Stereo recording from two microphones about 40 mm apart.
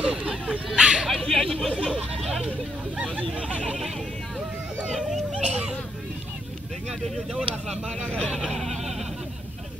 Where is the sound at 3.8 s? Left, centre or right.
Centre.